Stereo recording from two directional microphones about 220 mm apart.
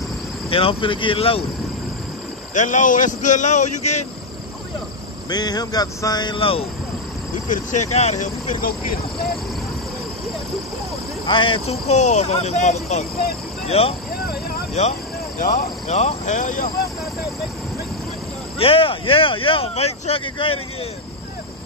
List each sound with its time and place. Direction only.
0.5 s speech: 25° left (ahead or behind)
2.5 s speech: 35° left (ahead or behind)
5.3 s speech: 20° left (ahead or behind)
7.9 s speech: 30° left (ahead or behind)
11.2 s speech: 25° left (ahead or behind)
18.6 s speech: 25° left (ahead or behind)